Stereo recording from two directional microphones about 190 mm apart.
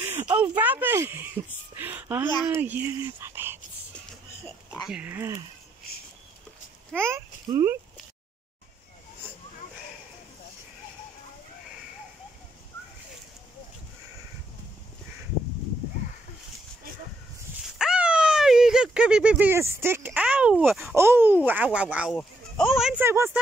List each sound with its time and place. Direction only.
0.4 s speech: 10° right (ahead or behind)
1.8 s a sound: 10° right (ahead or behind)
2.4 s speech: 10° right (ahead or behind)
4.8 s speech: 5° right (ahead or behind)
6.9 s speech: 10° right (ahead or behind)
17.6 s a sound: 5° right (ahead or behind)
20.1 s speech: 5° right (ahead or behind)
23.0 s speech: 10° right (ahead or behind)